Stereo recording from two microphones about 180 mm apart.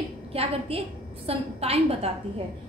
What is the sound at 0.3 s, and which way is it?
A woman's voice, 35° right (ahead or behind).